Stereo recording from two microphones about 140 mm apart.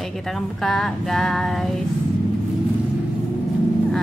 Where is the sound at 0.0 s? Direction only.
Centre (ahead or behind).